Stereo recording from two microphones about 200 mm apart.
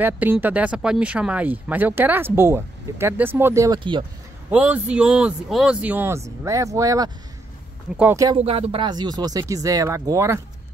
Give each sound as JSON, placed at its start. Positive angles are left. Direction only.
{"t": 0.0, "sound": "speech", "side_deg": -10}
{"t": 4.5, "sound": "speech", "side_deg": -5}
{"t": 8.4, "sound": "speech", "side_deg": -30}